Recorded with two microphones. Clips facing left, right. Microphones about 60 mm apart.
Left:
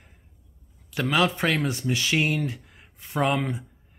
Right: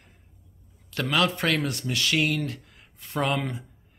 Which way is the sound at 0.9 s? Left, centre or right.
Centre.